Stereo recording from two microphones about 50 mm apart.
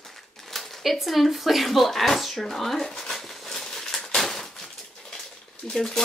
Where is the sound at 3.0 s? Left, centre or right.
Centre.